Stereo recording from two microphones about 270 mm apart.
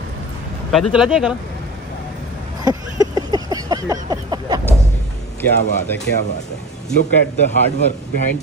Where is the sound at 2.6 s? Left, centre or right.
Centre.